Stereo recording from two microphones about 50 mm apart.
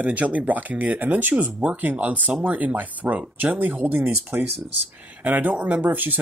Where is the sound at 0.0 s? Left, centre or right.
Right.